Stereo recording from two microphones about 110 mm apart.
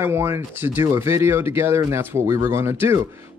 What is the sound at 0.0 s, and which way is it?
Speech, 20° right (ahead or behind).